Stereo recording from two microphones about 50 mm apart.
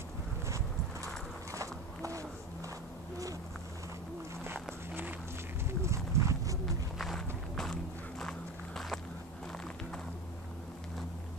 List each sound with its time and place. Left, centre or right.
2.0 s a sound: right
5.7 s horse: right
7.2 s walk: centre